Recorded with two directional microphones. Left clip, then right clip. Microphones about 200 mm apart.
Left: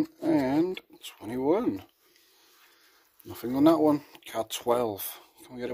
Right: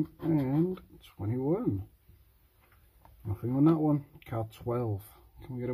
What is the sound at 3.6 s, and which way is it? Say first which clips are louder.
Speech: left 5 dB; 45° left (ahead or behind).